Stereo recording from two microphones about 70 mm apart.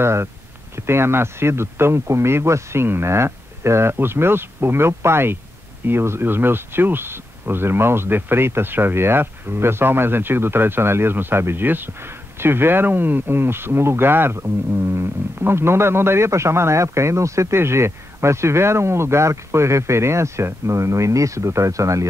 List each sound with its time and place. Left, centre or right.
0.0 s speech: right